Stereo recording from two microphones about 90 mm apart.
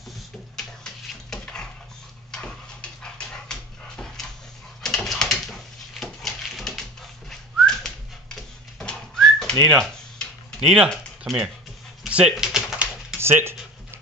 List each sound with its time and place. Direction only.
1.3 s a sound: 10° left (ahead or behind)
2.3 s dog: 10° left (ahead or behind)
4.8 s a sound: 5° left (ahead or behind)
8.7 s whistling: 5° left (ahead or behind)
10.6 s speech: 5° right (ahead or behind)
12.1 s typing: 10° right (ahead or behind)
13.2 s speech: 25° right (ahead or behind)